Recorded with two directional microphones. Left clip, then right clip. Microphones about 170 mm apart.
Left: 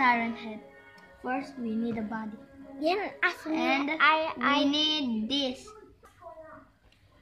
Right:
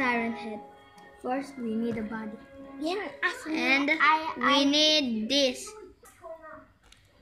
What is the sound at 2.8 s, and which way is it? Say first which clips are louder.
Speech: left 3 dB; 5° left (ahead or behind).